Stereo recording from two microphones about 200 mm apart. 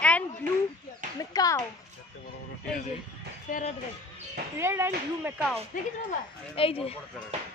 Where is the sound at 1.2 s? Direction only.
15° left (ahead or behind).